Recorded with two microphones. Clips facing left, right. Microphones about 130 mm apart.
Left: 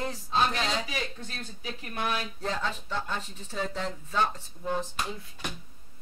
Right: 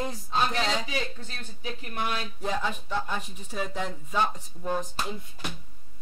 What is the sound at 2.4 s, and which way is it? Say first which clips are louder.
Speech: right 2 dB; 10° right (ahead or behind).